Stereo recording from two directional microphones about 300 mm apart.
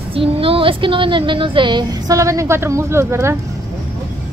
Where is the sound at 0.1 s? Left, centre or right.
Centre.